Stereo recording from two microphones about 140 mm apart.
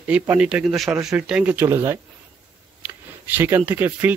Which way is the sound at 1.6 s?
20° right (ahead or behind).